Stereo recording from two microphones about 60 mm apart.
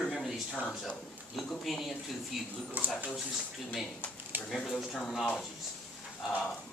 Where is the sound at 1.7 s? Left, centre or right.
Centre.